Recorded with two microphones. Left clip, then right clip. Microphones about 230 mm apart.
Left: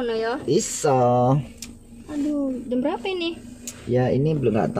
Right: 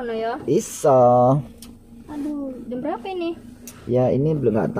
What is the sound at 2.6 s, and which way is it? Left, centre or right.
Speech, left.